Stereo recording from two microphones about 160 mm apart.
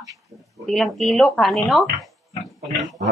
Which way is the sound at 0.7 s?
Centre (ahead or behind).